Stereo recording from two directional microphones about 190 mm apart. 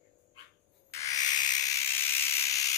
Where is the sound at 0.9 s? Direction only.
15° left (ahead or behind).